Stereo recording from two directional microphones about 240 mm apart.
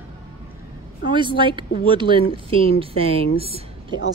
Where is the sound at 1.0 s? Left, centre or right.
Centre.